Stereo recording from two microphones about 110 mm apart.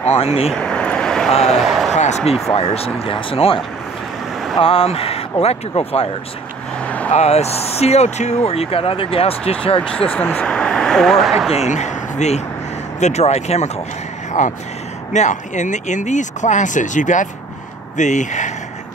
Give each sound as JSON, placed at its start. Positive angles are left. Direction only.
{"t": 0.2, "sound": "speech", "side_deg": 65}
{"t": 0.6, "sound": "vehicle", "side_deg": 10}
{"t": 1.3, "sound": "speech", "side_deg": 75}
{"t": 1.7, "sound": "a sound", "side_deg": 0}
{"t": 2.0, "sound": "speech", "side_deg": 90}
{"t": 2.5, "sound": "speech", "side_deg": 65}
{"t": 7.1, "sound": "speech", "side_deg": 85}
{"t": 9.8, "sound": "speech", "side_deg": 10}
{"t": 11.5, "sound": "speech", "side_deg": 90}
{"t": 14.4, "sound": "speech", "side_deg": 90}